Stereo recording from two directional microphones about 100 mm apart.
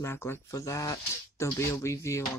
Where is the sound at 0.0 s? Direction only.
25° left (ahead or behind).